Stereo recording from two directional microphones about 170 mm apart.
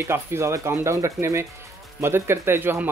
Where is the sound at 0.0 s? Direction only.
15° right (ahead or behind).